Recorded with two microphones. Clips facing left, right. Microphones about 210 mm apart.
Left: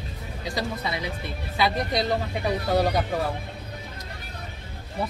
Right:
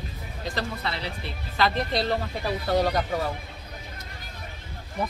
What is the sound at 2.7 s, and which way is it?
Speech, 10° left (ahead or behind).